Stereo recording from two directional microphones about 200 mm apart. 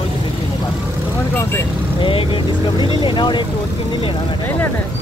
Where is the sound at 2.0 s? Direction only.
25° left (ahead or behind).